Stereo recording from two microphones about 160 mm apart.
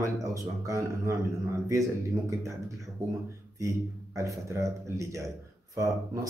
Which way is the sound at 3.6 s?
20° right (ahead or behind).